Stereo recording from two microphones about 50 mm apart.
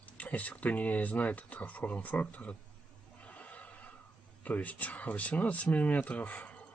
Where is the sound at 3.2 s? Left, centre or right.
Left.